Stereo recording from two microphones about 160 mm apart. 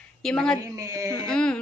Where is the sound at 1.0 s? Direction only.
5° left (ahead or behind).